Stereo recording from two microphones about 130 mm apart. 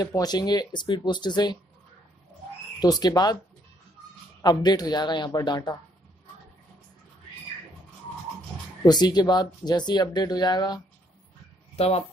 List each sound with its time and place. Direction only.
0.0 s speech: 30° left (ahead or behind)
2.8 s speech: 30° left (ahead or behind)
4.4 s speech: 30° left (ahead or behind)
8.8 s speech: 30° left (ahead or behind)
11.7 s speech: 50° left (ahead or behind)